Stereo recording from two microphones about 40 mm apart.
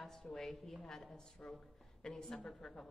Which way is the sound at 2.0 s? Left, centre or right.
Centre.